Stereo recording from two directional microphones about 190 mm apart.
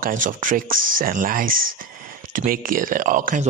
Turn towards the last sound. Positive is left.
turn(degrees=-45)  # may be behind; listen again after turning